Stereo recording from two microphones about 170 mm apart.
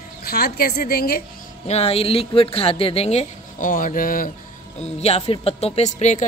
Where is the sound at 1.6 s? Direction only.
35° left (ahead or behind).